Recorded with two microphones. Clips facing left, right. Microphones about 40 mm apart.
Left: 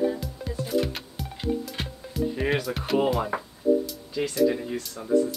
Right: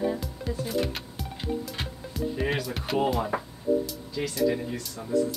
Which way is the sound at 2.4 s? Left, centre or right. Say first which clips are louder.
Left 2 dB; centre.